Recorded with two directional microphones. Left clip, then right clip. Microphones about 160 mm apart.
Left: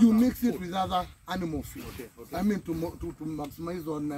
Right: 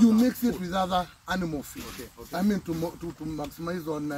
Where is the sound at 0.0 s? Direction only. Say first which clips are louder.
Right 1 dB; centre (ahead or behind).